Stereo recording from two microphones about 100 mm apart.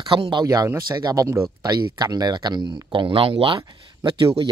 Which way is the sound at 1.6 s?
40° right (ahead or behind).